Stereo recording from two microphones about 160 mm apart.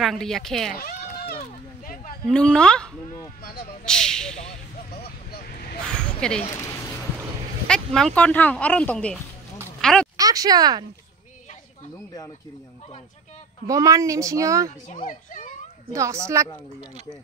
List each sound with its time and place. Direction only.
0.0 s speech: centre (ahead or behind)
0.7 s a sound: 70° left (ahead or behind)
2.2 s speech: 5° left (ahead or behind)
4.4 s speech: 45° left (ahead or behind)
5.3 s vehicle: 70° left (ahead or behind)
5.9 s speech: 5° left (ahead or behind)
6.5 s a sound: 20° left (ahead or behind)
7.6 s speech: 5° left (ahead or behind)
9.8 s a sound: 5° left (ahead or behind)
10.1 s speech: 20° right (ahead or behind)
13.7 s a woman's voice: 20° right (ahead or behind)
14.9 s speech: 50° left (ahead or behind)
15.9 s a woman's voice: 20° right (ahead or behind)